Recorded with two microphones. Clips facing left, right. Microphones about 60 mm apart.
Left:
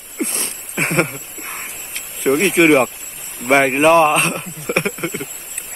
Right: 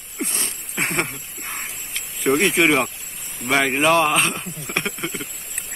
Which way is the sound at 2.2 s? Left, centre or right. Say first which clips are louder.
Left 3 dB; left.